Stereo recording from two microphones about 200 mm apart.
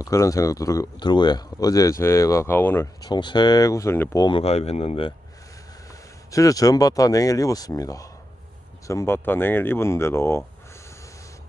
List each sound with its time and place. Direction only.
0.0 s speech: 15° left (ahead or behind)
3.1 s speech: 20° left (ahead or behind)
6.3 s speech: 15° left (ahead or behind)